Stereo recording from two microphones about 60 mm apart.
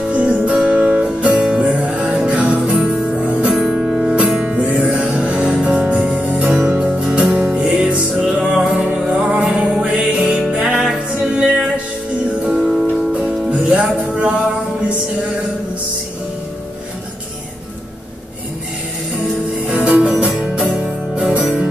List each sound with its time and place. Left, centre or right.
0.1 s music: right
3.6 s music: centre
4.6 s music: right
19.7 s music: centre